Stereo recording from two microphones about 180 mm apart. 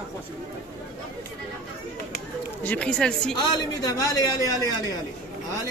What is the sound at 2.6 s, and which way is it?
Speech, 5° left (ahead or behind).